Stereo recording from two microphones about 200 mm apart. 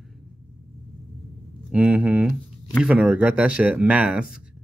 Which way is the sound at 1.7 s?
5° right (ahead or behind).